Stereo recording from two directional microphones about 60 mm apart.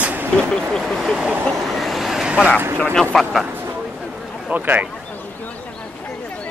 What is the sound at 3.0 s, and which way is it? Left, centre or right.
Speech, centre.